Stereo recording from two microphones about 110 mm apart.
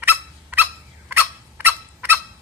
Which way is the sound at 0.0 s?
15° right (ahead or behind).